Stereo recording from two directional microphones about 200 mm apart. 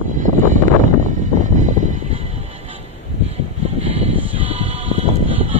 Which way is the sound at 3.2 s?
30° right (ahead or behind).